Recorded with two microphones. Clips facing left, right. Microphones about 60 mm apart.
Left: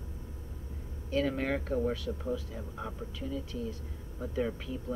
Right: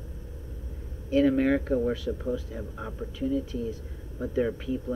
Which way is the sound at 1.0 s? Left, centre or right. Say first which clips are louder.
Right 8 dB; centre.